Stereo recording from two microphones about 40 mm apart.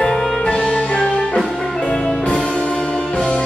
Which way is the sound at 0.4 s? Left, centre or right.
Left.